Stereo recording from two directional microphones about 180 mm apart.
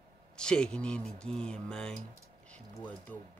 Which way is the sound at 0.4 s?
5° left (ahead or behind).